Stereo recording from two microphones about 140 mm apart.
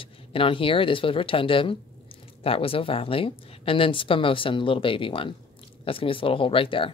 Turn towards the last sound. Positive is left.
turn(degrees=40)  # may be behind; listen again after turning